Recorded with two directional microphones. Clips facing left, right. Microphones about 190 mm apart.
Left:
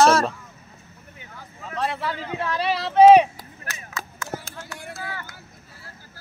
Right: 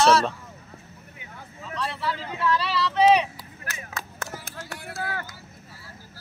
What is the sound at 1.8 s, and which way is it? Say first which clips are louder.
Speech: left 3 dB; 50° left (ahead or behind).